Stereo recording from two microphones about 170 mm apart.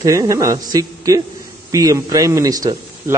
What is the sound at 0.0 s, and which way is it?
A man's voice, 20° right (ahead or behind).